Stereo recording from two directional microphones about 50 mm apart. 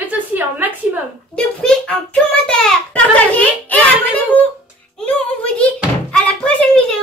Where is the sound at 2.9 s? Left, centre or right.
Left.